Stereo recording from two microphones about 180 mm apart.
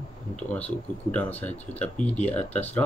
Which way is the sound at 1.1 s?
10° left (ahead or behind).